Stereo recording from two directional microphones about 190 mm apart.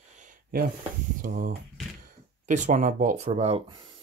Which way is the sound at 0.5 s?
45° right (ahead or behind).